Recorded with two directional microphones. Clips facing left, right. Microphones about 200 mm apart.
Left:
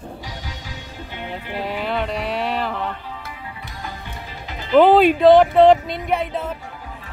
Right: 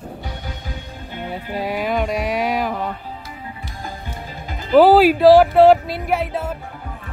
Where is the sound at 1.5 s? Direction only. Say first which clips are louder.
Right 3 dB; 10° right (ahead or behind).